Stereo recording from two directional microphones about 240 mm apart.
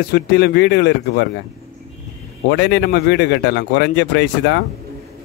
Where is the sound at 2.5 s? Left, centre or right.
Left.